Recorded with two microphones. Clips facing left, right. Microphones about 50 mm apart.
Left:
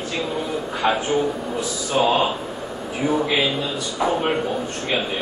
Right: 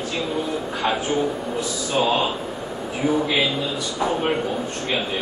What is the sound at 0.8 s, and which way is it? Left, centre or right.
Speech, centre.